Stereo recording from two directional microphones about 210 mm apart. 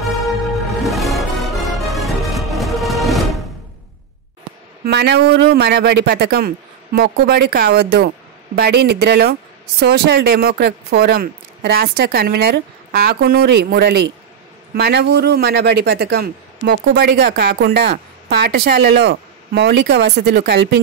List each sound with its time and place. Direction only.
0.8 s music: centre (ahead or behind)
4.8 s a man's voice: 50° right (ahead or behind)